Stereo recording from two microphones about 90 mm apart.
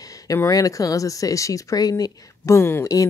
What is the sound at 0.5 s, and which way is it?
Speech, 40° left (ahead or behind).